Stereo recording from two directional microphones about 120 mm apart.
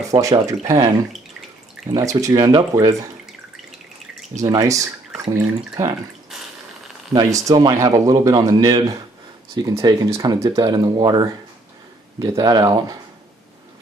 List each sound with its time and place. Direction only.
0.0 s a man's voice: 30° right (ahead or behind)
2.0 s a man's voice: 30° right (ahead or behind)
4.4 s a man's voice: 30° right (ahead or behind)
7.1 s a man's voice: 30° right (ahead or behind)